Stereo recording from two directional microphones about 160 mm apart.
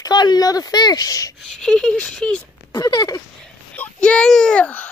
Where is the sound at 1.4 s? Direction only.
5° left (ahead or behind).